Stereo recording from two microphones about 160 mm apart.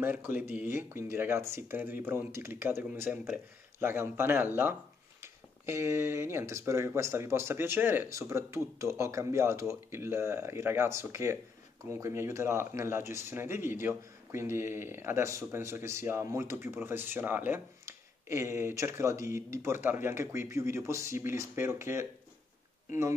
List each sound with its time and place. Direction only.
0.0 s speech: 10° right (ahead or behind)